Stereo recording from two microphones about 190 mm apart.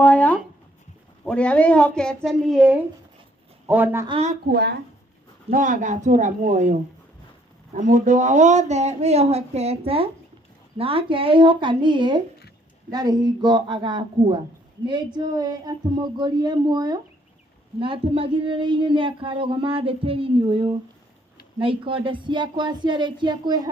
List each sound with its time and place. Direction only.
0.0 s a woman's voice: 10° left (ahead or behind); by 4.1 s 10° right (ahead or behind)
4.1 s a woman's voice: 35° right (ahead or behind)
4.5 s speech: 60° right (ahead or behind)
5.5 s a woman's voice: 45° right (ahead or behind); by 23.7 s 20° right (ahead or behind)